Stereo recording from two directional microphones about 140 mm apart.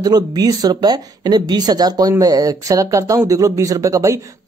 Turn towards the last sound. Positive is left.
turn(degrees=-25)  # may be behind; listen again after turning